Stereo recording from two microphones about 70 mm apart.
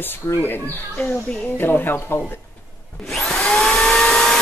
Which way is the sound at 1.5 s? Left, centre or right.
Left.